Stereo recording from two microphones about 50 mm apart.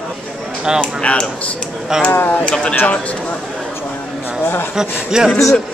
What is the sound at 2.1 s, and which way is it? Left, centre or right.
Speech, left.